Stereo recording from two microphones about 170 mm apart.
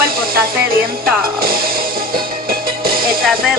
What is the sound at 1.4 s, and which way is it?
Music, 60° right (ahead or behind).